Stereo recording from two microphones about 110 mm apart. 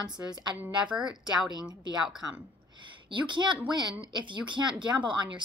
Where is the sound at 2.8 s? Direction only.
45° right (ahead or behind).